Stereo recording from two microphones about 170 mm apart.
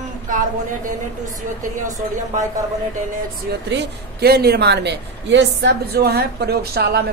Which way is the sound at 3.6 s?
80° right.